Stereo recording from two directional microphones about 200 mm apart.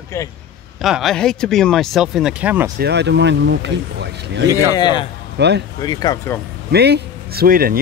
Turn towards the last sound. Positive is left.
turn(degrees=-45)  # may be behind; listen again after turning